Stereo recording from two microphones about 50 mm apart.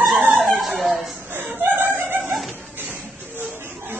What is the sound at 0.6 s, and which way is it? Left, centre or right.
Speech, centre.